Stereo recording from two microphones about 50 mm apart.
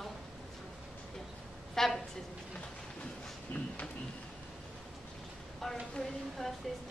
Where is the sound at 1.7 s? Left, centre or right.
Centre.